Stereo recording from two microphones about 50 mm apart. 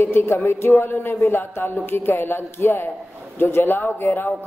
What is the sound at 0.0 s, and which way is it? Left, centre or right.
A man's voice, left.